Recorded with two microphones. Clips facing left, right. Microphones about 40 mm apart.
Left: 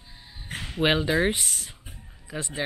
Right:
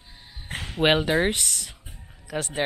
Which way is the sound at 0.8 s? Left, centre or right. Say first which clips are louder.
Right 2 dB; right.